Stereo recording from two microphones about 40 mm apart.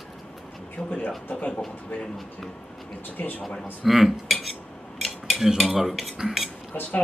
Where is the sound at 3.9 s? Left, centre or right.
Centre.